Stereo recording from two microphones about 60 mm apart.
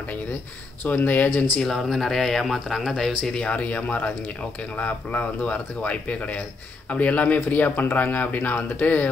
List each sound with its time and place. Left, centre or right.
0.8 s speech: left
1.6 s speech: centre
3.0 s speech: centre